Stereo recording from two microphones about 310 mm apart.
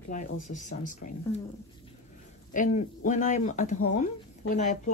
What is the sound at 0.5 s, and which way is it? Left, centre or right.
Speech, left.